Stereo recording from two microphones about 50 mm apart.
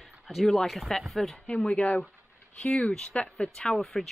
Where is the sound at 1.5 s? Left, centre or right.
Left.